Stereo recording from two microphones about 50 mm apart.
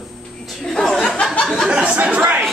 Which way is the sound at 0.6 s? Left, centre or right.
Centre.